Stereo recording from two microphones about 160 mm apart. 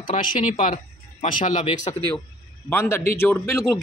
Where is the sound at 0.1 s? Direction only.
55° left (ahead or behind).